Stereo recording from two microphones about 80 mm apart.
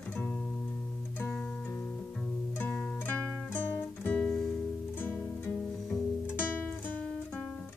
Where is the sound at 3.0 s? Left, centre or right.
Left.